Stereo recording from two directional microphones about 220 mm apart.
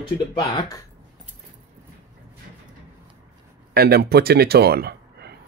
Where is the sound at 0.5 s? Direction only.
15° left (ahead or behind).